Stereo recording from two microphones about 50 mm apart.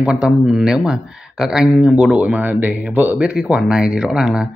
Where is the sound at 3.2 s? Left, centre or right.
Right.